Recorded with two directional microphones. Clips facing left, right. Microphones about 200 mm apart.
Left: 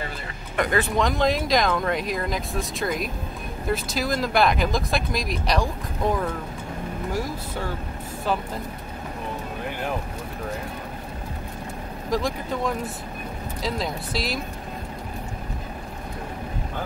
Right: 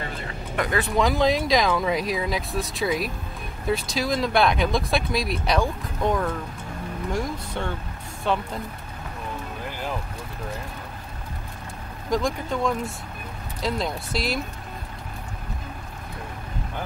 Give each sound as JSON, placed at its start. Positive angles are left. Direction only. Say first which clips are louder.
{"t": 0.6, "sound": "speech", "louder": "left 1 dB", "side_deg": 0}
{"t": 12.1, "sound": "speech", "louder": "right 1 dB", "side_deg": 0}